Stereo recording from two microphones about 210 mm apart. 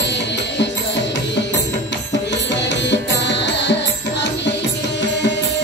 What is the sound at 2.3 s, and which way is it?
Music, 55° left (ahead or behind).